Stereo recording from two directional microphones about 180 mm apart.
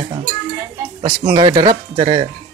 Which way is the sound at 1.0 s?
25° right (ahead or behind).